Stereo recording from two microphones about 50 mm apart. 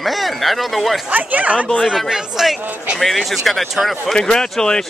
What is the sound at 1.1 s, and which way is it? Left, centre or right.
Speech, right.